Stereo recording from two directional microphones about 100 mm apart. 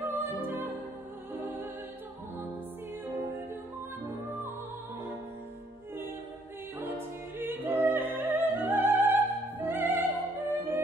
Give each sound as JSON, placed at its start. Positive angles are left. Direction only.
{"t": 0.1, "sound": "music", "side_deg": -20}
{"t": 7.3, "sound": "music", "side_deg": -20}